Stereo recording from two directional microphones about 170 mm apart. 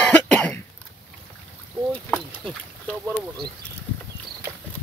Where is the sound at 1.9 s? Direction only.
5° left (ahead or behind).